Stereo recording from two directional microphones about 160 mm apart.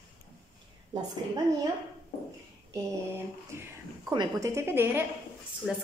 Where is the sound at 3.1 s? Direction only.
15° right (ahead or behind).